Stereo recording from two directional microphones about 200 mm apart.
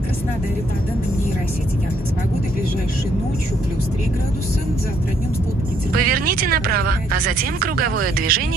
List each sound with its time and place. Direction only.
5.9 s speech: 45° right (ahead or behind)